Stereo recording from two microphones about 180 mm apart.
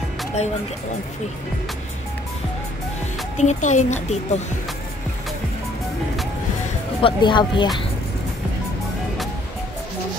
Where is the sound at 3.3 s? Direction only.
40° left (ahead or behind).